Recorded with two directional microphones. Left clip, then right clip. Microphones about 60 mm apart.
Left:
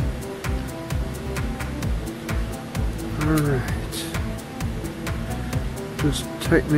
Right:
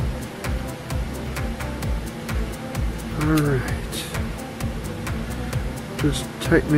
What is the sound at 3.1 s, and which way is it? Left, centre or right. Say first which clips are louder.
Speech: right 2 dB; centre.